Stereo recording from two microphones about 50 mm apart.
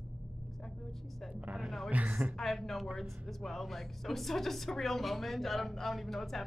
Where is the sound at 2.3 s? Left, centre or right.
Centre.